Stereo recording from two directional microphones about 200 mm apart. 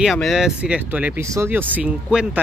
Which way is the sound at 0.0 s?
Centre (ahead or behind).